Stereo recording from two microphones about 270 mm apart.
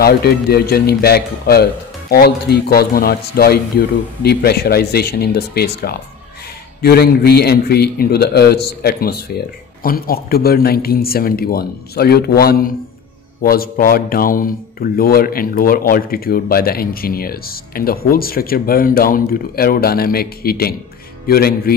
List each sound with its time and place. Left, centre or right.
0.0 s speech: left